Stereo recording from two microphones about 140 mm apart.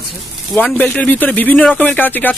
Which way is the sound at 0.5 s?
10° left (ahead or behind).